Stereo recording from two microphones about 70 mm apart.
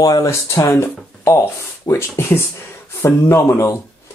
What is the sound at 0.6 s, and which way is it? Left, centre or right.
Speech, left.